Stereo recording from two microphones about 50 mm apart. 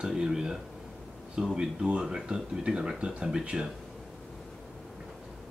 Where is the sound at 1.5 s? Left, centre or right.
Centre.